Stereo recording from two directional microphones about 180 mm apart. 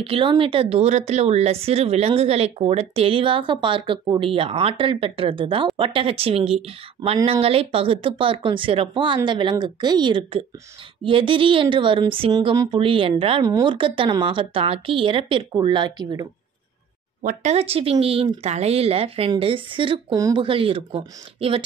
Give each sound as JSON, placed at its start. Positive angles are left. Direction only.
{"t": 0.0, "sound": "speech", "side_deg": -30}
{"t": 17.2, "sound": "speech", "side_deg": -45}